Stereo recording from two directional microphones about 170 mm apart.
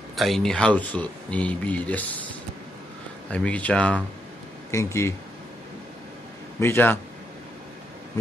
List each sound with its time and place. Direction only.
0.1 s speech: centre (ahead or behind)
3.3 s speech: 5° left (ahead or behind)
6.6 s speech: 15° left (ahead or behind)